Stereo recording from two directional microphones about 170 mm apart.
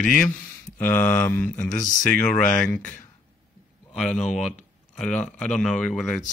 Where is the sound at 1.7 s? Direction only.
50° left (ahead or behind).